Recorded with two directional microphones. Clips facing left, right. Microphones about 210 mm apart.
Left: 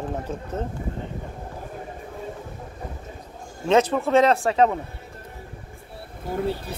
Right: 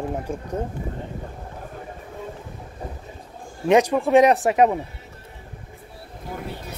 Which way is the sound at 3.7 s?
15° right (ahead or behind).